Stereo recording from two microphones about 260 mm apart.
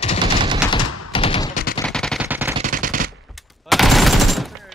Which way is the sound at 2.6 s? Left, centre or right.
Right.